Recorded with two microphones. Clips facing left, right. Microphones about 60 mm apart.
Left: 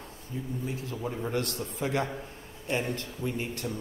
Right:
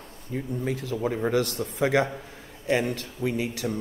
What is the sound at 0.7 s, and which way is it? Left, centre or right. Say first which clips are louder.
A man's voice: right 7 dB; right.